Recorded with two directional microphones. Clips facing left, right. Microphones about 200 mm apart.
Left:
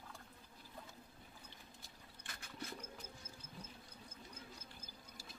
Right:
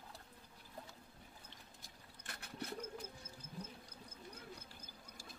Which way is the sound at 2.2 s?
65° right (ahead or behind).